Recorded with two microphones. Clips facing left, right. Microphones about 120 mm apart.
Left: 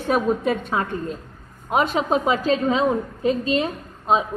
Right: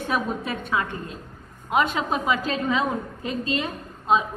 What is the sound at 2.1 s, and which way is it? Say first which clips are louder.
A woman's voice: left 5 dB; 30° left (ahead or behind).